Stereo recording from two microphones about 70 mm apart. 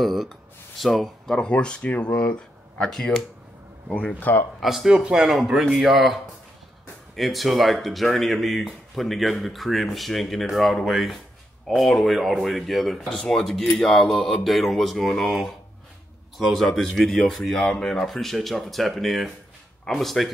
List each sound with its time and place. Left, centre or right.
0.0 s speech: centre
4.2 s speech: left
4.6 s a man's voice: centre